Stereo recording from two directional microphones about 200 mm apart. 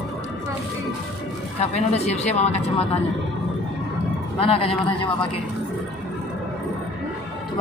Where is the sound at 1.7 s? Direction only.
30° left (ahead or behind).